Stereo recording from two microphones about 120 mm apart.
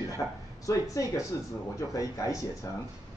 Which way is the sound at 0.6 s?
30° left (ahead or behind).